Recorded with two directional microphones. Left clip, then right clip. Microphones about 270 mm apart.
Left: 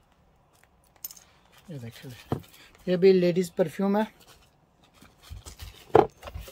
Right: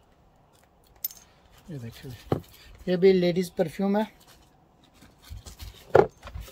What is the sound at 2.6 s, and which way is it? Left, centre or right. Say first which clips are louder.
Speech: even; centre.